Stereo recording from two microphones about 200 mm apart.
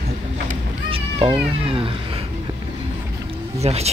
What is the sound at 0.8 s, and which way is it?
Cat, 25° right (ahead or behind).